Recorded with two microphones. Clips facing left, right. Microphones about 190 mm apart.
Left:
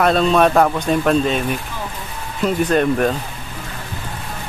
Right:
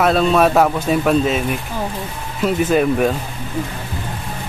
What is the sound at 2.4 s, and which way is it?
Speech, 5° right (ahead or behind).